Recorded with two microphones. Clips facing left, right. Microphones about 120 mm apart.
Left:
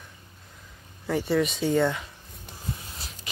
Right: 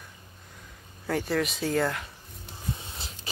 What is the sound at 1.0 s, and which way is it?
Speech, centre (ahead or behind).